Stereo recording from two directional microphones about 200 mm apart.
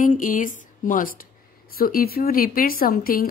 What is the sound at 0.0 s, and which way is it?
Speech, 40° left (ahead or behind).